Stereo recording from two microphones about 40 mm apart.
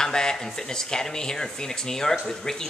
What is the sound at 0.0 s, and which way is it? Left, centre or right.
Speech, centre.